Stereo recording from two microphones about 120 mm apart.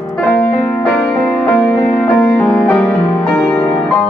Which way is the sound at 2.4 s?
5° left (ahead or behind).